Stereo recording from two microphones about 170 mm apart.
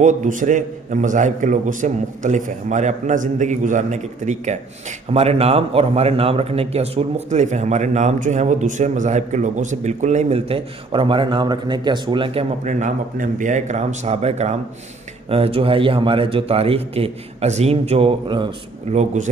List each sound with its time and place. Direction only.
0.0 s a man's voice: 45° right (ahead or behind); by 12.4 s 30° right (ahead or behind)
12.6 s a man's voice: 45° right (ahead or behind); by 18.5 s 30° right (ahead or behind)
18.9 s a man's voice: 45° right (ahead or behind)